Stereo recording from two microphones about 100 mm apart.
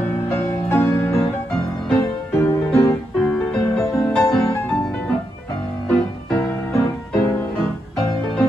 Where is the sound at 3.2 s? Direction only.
5° left (ahead or behind).